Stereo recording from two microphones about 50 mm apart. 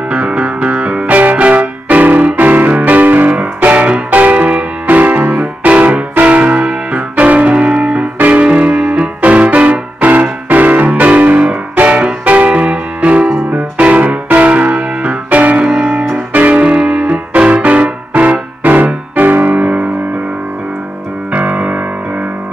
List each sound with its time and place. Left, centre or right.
0.1 s music: right
3.3 s music: right
19.1 s piano: right
19.6 s music: right
21.3 s music: right